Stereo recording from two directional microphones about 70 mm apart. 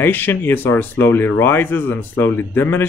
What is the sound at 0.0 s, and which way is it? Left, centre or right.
Speech, left.